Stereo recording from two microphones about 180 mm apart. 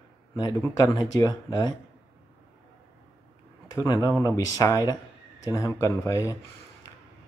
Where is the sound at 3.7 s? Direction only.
20° left (ahead or behind).